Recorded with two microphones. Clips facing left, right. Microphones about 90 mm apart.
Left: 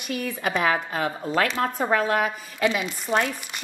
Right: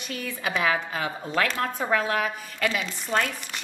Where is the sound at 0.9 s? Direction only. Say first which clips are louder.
Left 3 dB; centre (ahead or behind).